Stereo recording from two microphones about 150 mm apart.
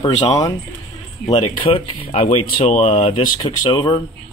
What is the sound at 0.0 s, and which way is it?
Speech, 45° left (ahead or behind).